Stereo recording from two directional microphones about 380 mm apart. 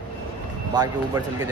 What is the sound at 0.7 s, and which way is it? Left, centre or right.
Speech, centre.